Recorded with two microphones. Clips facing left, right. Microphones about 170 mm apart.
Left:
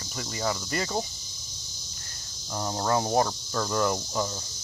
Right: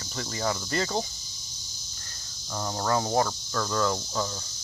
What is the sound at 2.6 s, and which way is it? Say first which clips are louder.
Cricket: left 1 dB; 15° left (ahead or behind).